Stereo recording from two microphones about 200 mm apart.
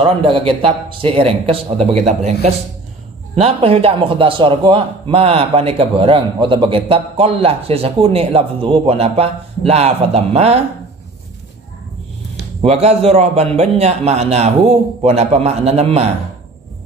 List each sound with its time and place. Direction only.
0.0 s a man's voice: 25° right (ahead or behind)
12.6 s a man's voice: 30° right (ahead or behind)